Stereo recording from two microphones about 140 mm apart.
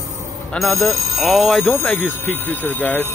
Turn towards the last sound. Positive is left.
turn(degrees=15)  # may be behind; listen again after turning